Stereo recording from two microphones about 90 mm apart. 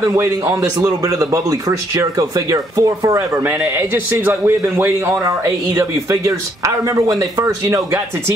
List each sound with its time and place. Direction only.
0.1 s speech: 35° right (ahead or behind)
2.0 s speech: 45° right (ahead or behind)
3.4 s a man's voice: 25° right (ahead or behind)
5.2 s speech: 35° right (ahead or behind)